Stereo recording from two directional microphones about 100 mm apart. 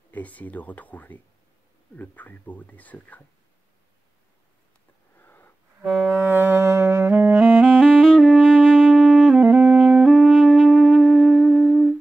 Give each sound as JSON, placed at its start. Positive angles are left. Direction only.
{"t": 0.1, "sound": "speech", "side_deg": 15}
{"t": 5.2, "sound": "a sound", "side_deg": 20}
{"t": 5.9, "sound": "music", "side_deg": 0}
{"t": 6.1, "sound": "saxophone", "side_deg": -25}
{"t": 7.8, "sound": "music", "side_deg": 5}